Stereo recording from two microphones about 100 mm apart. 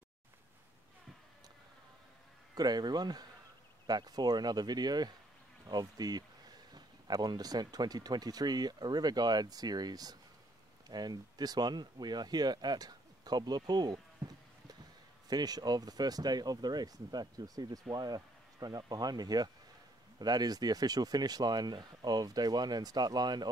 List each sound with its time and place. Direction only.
2.5 s speech: 45° right (ahead or behind)
15.2 s speech: 40° right (ahead or behind)